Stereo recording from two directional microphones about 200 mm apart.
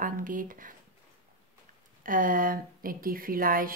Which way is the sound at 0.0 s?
40° right (ahead or behind).